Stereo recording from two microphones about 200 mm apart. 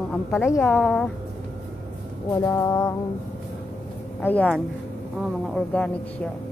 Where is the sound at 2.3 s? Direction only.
15° left (ahead or behind).